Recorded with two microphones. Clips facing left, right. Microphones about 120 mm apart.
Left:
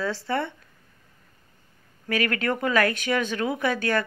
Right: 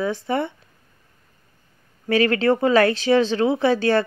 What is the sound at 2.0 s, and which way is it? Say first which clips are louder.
Speech: right 8 dB; 30° right (ahead or behind).